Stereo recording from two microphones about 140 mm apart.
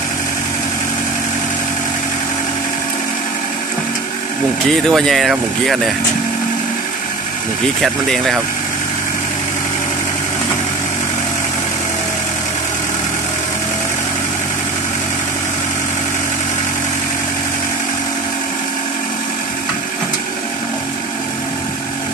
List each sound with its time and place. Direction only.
4.8 s speech: centre (ahead or behind)
7.8 s speech: centre (ahead or behind)